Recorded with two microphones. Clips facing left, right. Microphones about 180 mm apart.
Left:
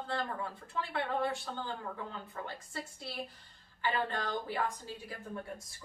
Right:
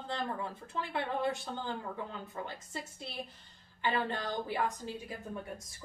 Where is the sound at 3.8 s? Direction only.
20° right (ahead or behind).